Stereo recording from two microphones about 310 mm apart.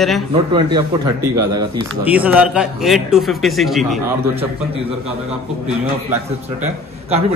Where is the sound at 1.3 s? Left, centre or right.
Right.